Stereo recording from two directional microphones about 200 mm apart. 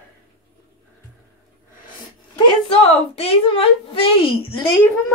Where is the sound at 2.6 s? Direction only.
30° left (ahead or behind).